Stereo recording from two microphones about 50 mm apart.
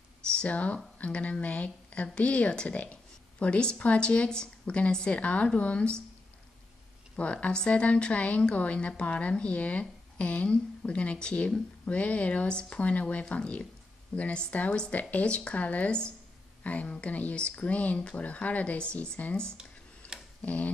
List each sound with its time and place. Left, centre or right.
0.3 s a woman's voice: left
7.2 s a woman's voice: left
19.2 s speech: left
20.0 s tick-tock: left
20.4 s a woman's voice: left